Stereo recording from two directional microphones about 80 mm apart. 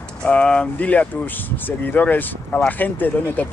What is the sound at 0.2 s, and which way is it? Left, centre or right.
Speech, centre.